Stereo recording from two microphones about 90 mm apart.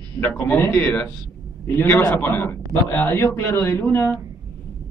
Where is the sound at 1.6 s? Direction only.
25° left (ahead or behind).